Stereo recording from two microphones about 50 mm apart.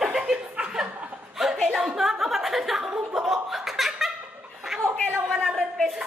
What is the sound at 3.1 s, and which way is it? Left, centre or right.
Chuckle, centre.